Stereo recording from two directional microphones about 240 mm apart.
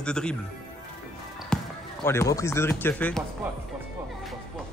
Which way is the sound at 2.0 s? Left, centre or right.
Centre.